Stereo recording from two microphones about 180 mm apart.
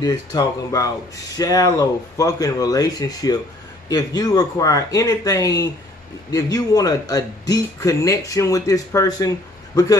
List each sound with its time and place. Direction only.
0.0 s speech: 20° left (ahead or behind)